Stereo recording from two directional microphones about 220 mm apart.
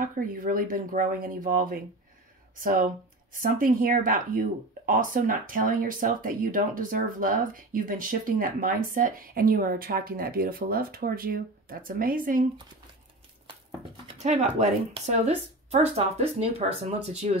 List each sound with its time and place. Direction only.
0.0 s speech: 40° right (ahead or behind)
14.0 s speech: 30° right (ahead or behind)